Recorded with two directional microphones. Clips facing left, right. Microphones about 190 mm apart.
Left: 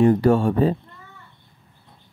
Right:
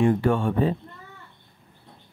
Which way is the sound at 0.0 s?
40° left (ahead or behind).